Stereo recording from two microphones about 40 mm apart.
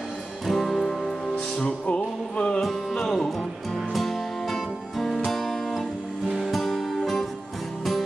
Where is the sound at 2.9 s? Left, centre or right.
Centre.